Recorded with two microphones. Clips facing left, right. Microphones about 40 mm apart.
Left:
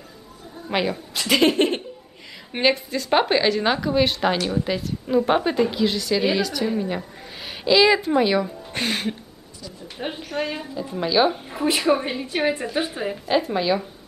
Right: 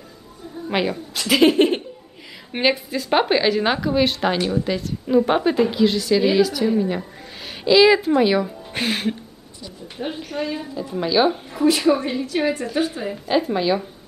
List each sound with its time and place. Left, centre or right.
0.7 s a woman's voice: centre
9.9 s a woman's voice: centre
10.6 s a woman's voice: centre
11.5 s a woman's voice: left
13.3 s a woman's voice: centre